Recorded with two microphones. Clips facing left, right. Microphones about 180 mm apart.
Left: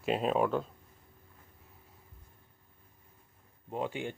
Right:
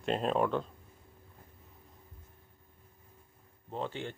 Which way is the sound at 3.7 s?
10° left (ahead or behind).